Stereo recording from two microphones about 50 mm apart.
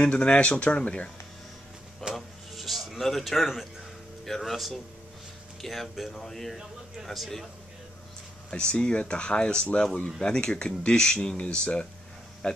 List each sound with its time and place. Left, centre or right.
0.0 s speech: left
2.1 s a sound: centre
4.3 s speech: centre
8.5 s speech: centre